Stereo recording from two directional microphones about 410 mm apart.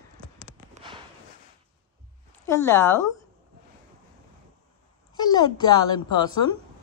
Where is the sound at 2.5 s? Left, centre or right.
Centre.